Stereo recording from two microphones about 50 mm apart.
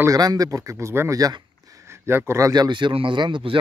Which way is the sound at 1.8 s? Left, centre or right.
Right.